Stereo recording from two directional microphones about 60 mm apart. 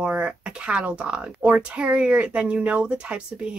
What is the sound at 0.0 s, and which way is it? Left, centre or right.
Speech, centre.